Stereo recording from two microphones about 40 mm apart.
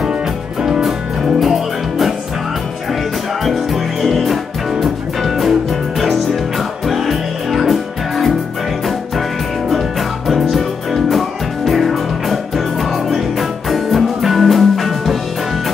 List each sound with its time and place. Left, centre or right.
0.6 s music: centre
0.8 s music: centre
3.4 s music: centre
9.7 s music: centre